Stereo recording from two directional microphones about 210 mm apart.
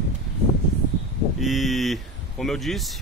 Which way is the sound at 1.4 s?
Centre (ahead or behind).